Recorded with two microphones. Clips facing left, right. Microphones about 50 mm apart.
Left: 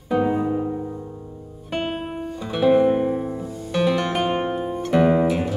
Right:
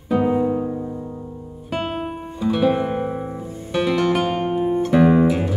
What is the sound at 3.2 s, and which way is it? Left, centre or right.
Music, right.